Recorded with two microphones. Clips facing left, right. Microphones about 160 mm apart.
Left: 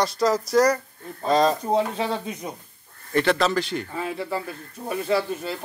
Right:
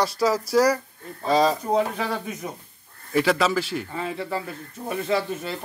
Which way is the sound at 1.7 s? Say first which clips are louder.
Even; 25° left (ahead or behind).